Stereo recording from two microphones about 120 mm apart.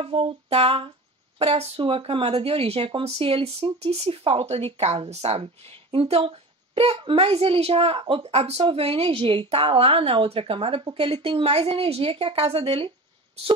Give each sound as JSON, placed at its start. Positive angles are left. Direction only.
{"t": 0.0, "sound": "speech", "side_deg": -50}